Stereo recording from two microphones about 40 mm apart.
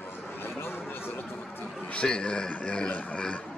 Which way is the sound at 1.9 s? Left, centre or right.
Left.